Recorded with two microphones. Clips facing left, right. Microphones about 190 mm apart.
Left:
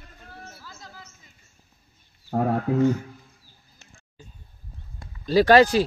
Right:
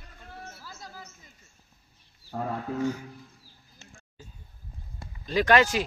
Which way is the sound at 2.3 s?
60° left (ahead or behind).